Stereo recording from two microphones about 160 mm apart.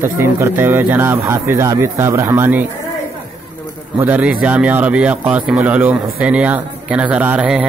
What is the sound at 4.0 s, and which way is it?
Speech, 10° right (ahead or behind).